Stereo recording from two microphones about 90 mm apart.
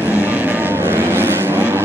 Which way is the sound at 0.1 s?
20° right (ahead or behind).